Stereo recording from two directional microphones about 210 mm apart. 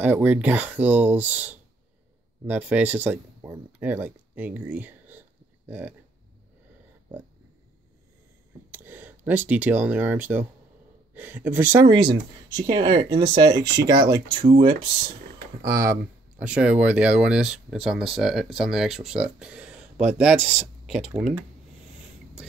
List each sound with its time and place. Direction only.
0.0 s speech: 10° right (ahead or behind)
8.7 s speech: 10° right (ahead or behind)
15.6 s speech: 15° right (ahead or behind)